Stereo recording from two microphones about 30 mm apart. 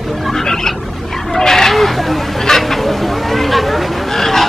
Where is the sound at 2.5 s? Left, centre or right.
Centre.